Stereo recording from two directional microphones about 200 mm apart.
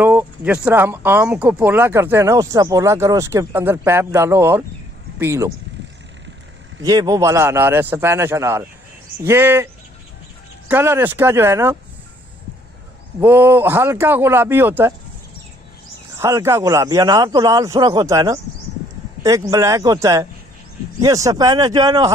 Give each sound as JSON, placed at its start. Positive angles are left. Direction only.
{"t": 0.0, "sound": "speech", "side_deg": -10}
{"t": 6.8, "sound": "speech", "side_deg": -20}
{"t": 10.7, "sound": "speech", "side_deg": -10}
{"t": 13.2, "sound": "speech", "side_deg": -10}
{"t": 16.2, "sound": "speech", "side_deg": -15}